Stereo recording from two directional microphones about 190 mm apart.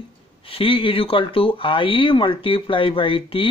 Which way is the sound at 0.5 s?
30° left (ahead or behind).